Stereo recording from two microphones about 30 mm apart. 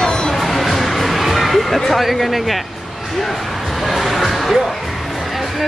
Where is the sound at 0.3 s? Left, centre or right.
Centre.